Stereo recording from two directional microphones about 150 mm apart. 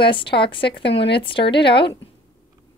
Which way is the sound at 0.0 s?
35° left (ahead or behind).